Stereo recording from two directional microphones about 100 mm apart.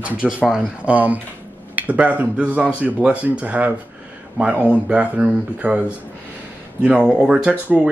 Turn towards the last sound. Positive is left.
turn(degrees=-15)  # may be behind; listen again after turning